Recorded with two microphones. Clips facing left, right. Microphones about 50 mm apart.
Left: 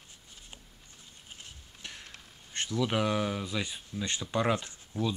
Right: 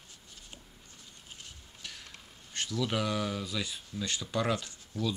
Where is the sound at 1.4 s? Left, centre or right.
Left.